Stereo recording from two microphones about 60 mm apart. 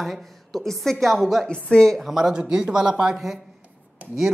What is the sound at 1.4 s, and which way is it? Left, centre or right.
Speech, centre.